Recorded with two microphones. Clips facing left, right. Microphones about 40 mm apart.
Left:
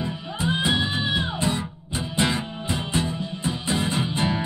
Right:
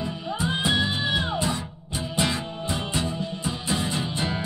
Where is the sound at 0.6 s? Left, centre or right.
Centre.